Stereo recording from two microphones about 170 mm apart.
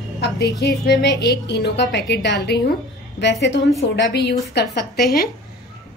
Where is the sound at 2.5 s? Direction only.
65° left (ahead or behind).